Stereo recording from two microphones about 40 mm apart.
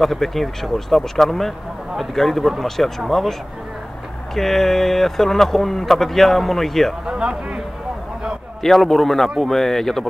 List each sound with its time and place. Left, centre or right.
0.0 s speech: centre
4.4 s speech: centre
7.1 s speech: right
8.6 s speech: centre